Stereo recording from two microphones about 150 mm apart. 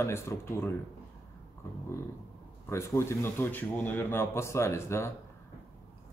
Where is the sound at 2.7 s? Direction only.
20° left (ahead or behind).